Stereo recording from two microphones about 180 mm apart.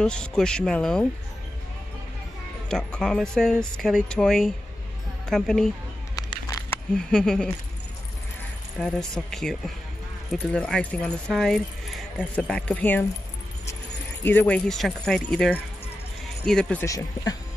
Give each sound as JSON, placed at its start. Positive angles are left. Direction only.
{"t": 0.0, "sound": "speech", "side_deg": 5}
{"t": 2.7, "sound": "speech", "side_deg": 5}
{"t": 6.1, "sound": "a sound", "side_deg": 20}
{"t": 7.1, "sound": "speech", "side_deg": 5}
{"t": 8.7, "sound": "speech", "side_deg": 0}
{"t": 14.2, "sound": "speech", "side_deg": 10}
{"t": 16.8, "sound": "speech", "side_deg": 20}